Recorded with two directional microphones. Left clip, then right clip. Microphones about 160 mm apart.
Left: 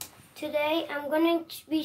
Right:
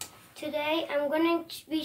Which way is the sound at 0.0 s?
45° left (ahead or behind).